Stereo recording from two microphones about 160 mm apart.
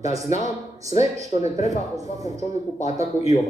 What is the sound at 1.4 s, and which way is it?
Speech, 45° left (ahead or behind).